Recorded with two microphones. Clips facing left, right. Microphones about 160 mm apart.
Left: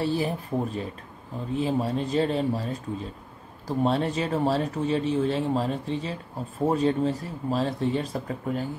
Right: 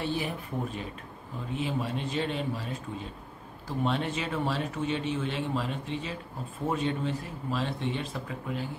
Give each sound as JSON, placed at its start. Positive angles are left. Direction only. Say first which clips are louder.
{"t": 0.0, "sound": "speech", "louder": "left 6 dB", "side_deg": 35}